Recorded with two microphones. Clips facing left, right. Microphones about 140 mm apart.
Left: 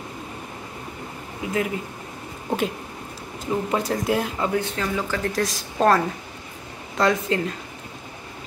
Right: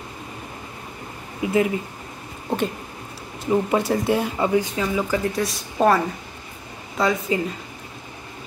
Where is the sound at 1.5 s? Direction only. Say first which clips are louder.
Right 5 dB; centre (ahead or behind).